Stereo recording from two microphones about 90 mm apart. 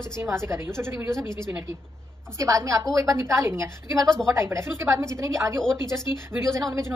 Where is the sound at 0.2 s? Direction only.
30° right (ahead or behind).